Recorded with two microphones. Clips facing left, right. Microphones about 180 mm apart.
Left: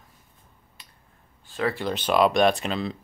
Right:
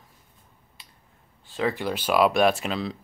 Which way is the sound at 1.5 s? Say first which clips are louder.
Even; 15° right (ahead or behind).